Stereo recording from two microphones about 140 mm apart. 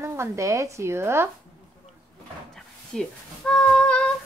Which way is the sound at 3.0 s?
5° left (ahead or behind).